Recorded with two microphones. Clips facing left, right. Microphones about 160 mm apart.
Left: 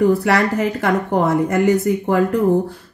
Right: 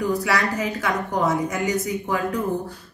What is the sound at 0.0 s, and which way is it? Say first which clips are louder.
Speech: left 7 dB; 60° left (ahead or behind).